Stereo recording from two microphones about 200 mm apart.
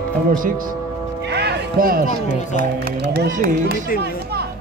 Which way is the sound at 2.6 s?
50° right (ahead or behind).